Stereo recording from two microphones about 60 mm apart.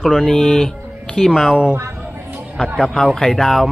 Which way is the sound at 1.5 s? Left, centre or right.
Centre.